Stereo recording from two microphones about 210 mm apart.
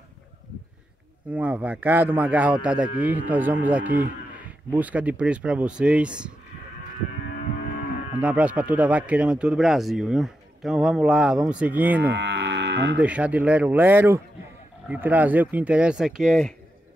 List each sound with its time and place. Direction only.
1.3 s livestock: 5° right (ahead or behind)
8.2 s speech: 5° right (ahead or behind)
12.1 s livestock: 55° right (ahead or behind)
13.0 s livestock: 5° right (ahead or behind)
14.9 s speech: 10° right (ahead or behind)